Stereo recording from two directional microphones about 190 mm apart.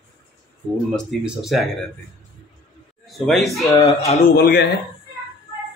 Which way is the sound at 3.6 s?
15° left (ahead or behind).